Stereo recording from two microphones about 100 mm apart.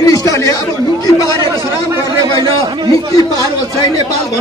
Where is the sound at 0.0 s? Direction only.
40° left (ahead or behind).